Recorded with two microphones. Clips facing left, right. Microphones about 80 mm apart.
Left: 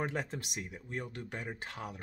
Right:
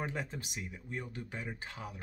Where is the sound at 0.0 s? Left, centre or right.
Left.